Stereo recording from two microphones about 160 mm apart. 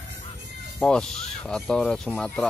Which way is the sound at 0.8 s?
5° left (ahead or behind).